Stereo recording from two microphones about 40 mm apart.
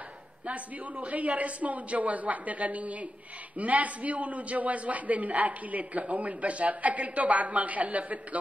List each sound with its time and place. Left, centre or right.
0.5 s a man's voice: right